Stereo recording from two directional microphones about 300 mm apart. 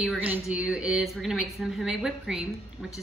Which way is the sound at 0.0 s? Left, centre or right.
Centre.